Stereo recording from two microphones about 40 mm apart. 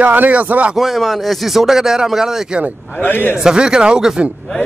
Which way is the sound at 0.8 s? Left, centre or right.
Centre.